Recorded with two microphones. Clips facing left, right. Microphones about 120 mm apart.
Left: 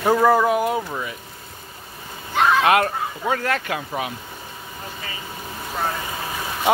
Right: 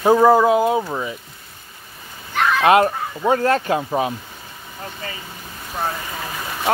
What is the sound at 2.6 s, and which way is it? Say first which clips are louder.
Speech: right 4 dB; 25° right (ahead or behind).